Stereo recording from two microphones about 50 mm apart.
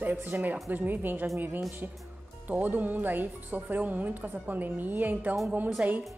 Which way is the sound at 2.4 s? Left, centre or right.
Right.